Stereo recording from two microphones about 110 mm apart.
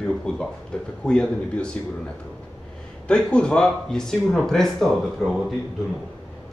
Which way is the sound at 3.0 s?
10° left (ahead or behind).